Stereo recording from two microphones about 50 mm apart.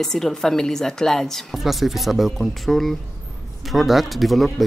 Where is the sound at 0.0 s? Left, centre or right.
Centre.